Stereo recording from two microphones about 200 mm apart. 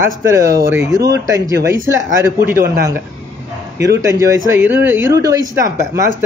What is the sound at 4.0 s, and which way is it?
Speech, 15° right (ahead or behind).